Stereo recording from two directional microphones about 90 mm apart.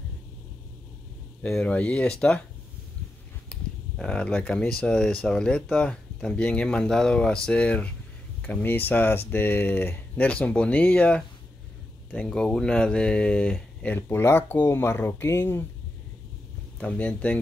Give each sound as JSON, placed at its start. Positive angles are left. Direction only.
{"t": 1.4, "sound": "speech", "side_deg": 10}
{"t": 3.4, "sound": "speech", "side_deg": 10}
{"t": 16.8, "sound": "speech", "side_deg": 15}